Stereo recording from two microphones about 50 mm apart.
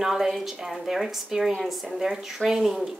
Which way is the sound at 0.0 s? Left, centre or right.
Centre.